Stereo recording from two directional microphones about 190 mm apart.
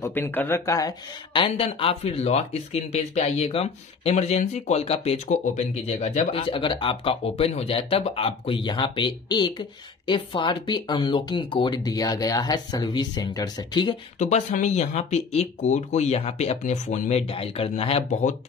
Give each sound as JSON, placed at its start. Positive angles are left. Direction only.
{"t": 0.0, "sound": "speech", "side_deg": 10}
{"t": 14.1, "sound": "speech", "side_deg": 40}